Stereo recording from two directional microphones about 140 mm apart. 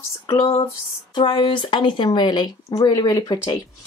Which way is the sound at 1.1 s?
35° left (ahead or behind).